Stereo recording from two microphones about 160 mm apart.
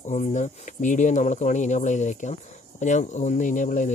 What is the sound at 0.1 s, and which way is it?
Speech, 50° left (ahead or behind).